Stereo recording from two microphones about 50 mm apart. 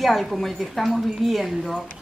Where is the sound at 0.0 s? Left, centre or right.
Centre.